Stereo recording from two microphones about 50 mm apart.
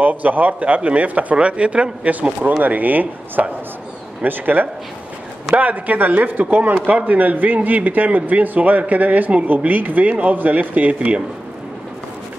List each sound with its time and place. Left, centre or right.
0.0 s a man's voice: right